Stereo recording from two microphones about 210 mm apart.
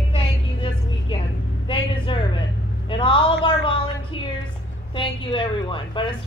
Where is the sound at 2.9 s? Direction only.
25° left (ahead or behind).